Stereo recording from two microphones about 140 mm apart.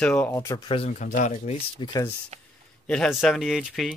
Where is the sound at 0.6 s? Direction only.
40° left (ahead or behind).